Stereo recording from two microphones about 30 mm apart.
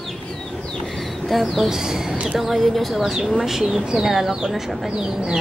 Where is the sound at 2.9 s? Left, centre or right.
Centre.